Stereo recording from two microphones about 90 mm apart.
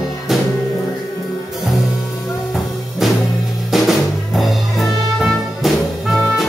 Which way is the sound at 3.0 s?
Centre (ahead or behind).